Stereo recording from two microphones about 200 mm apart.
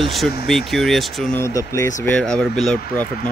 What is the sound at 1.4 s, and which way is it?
Speech, 15° left (ahead or behind).